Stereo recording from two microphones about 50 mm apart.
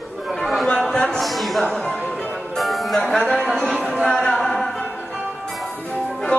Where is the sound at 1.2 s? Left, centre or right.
Centre.